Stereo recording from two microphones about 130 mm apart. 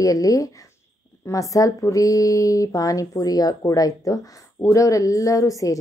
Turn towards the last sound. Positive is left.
turn(degrees=25)  # may be behind; listen again after turning